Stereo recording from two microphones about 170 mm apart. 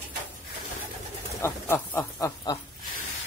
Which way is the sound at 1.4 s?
15° left (ahead or behind).